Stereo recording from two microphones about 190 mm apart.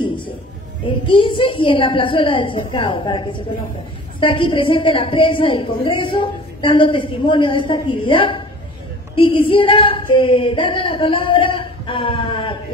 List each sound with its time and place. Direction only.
0.0 s music: 25° left (ahead or behind)
0.8 s a woman's voice: 25° left (ahead or behind)